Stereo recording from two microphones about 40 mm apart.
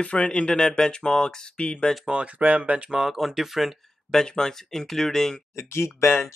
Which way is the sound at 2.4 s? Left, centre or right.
Right.